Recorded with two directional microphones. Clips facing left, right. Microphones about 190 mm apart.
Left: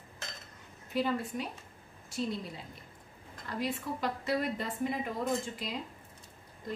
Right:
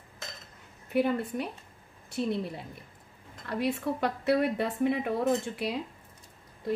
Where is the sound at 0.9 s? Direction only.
60° right (ahead or behind).